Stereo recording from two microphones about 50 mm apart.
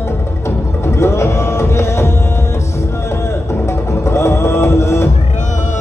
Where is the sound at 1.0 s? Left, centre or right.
Left.